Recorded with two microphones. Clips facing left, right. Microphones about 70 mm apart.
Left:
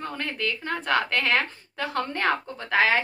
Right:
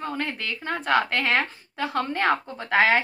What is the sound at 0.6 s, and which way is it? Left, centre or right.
A woman's voice, right.